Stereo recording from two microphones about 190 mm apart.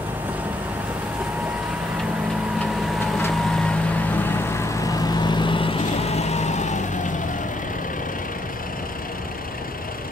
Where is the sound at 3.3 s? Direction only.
5° left (ahead or behind); by 7.2 s 40° left (ahead or behind).